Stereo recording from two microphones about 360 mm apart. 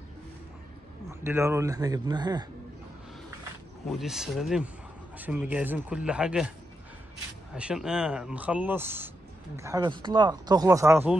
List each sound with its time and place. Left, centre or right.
1.2 s speech: centre
4.0 s speech: centre
7.5 s speech: centre